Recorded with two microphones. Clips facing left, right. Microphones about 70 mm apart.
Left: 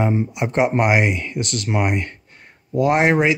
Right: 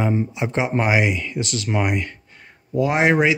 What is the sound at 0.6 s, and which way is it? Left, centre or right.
Speech, centre.